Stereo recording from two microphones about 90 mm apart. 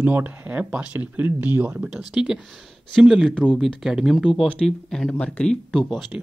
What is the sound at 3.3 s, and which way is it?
Speech, 10° left (ahead or behind).